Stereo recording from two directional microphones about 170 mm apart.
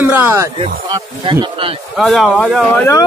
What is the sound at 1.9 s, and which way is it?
Speech, centre (ahead or behind).